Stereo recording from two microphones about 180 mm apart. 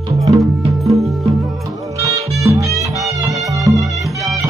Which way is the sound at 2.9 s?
20° right (ahead or behind).